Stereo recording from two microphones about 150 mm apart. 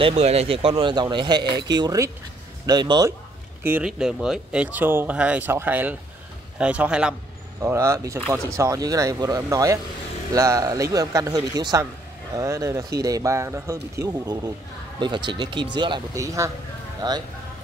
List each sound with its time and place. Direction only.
0.0 s speech: 45° right (ahead or behind); by 3.2 s 25° right (ahead or behind)
3.6 s speech: 10° right (ahead or behind)
7.6 s speech: 20° right (ahead or behind)